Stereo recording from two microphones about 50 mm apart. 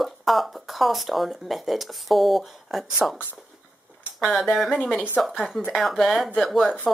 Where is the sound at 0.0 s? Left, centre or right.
Centre.